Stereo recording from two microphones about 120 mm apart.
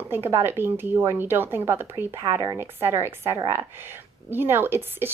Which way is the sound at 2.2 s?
30° right (ahead or behind).